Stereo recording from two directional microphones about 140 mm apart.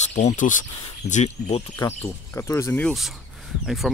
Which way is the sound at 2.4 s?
20° left (ahead or behind).